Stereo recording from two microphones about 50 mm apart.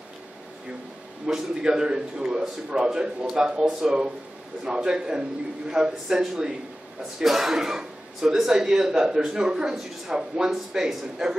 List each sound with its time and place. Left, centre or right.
1.2 s a man's voice: centre